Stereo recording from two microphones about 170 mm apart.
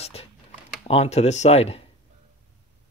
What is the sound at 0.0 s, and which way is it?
Computer keyboard, 35° left (ahead or behind).